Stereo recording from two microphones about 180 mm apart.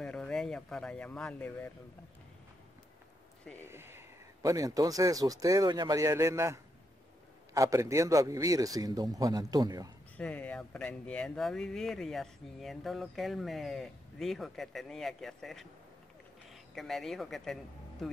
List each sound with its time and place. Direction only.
0.0 s speech: 5° left (ahead or behind)
3.6 s speech: 15° right (ahead or behind)
10.1 s speech: 5° left (ahead or behind)
16.7 s speech: centre (ahead or behind)